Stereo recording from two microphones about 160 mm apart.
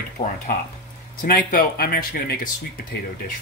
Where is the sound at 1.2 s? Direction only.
65° left (ahead or behind).